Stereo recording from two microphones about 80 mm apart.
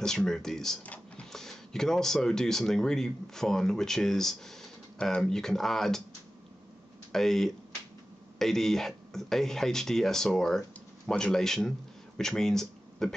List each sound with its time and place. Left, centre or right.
0.0 s speech: centre
0.8 s a sound: centre
1.3 s speech: centre
7.1 s speech: centre